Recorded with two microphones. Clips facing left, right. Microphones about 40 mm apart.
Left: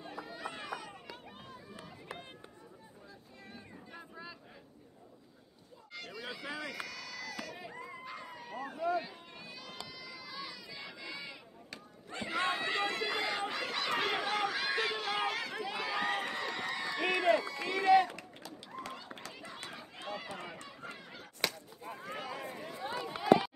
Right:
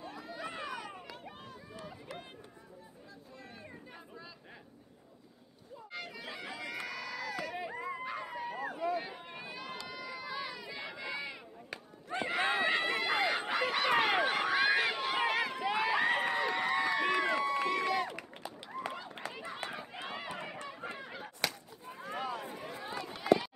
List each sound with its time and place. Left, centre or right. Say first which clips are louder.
0.0 s a sound: even; centre
5.9 s a sound: even; centre
8.6 s run: left 2 dB; centre
9.0 s a sound: right 4 dB; right
9.8 s run: right 6 dB; right
17.1 s run: left 2 dB; centre
17.4 s run: right 4 dB; right
21.4 s whip: left 1 dB; centre
22.8 s run: left 4 dB; centre
23.1 s run: left 2 dB; centre